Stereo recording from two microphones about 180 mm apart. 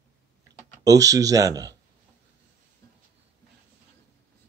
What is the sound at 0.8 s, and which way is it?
Speech, 20° right (ahead or behind).